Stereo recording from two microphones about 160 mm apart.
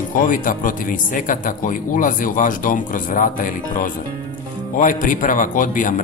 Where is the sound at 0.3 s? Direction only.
55° left (ahead or behind).